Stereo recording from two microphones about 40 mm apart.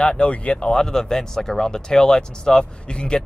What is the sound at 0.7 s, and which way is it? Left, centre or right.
Speech, centre.